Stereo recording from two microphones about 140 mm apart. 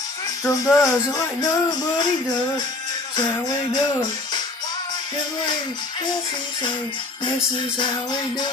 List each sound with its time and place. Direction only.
0.4 s speech: 25° left (ahead or behind)
0.7 s music: 25° left (ahead or behind)